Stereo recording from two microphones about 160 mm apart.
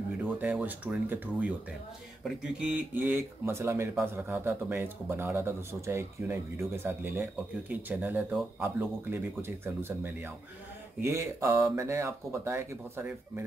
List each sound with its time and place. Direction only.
0.2 s speech: 10° right (ahead or behind)